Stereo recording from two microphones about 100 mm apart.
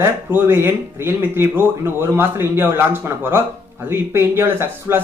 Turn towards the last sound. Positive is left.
turn(degrees=-20)  # may be behind; listen again after turning